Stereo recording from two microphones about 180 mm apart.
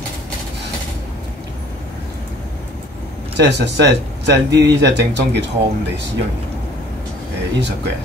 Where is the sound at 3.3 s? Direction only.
70° right (ahead or behind).